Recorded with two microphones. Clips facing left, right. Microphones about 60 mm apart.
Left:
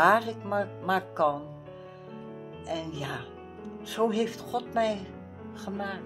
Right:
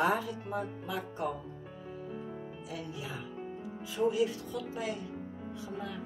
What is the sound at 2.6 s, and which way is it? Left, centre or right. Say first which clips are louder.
Speech: left 10 dB; left.